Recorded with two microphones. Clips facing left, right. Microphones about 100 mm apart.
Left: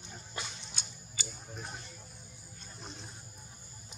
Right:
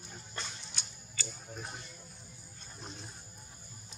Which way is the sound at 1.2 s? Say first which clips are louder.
Right 1 dB; 15° left (ahead or behind).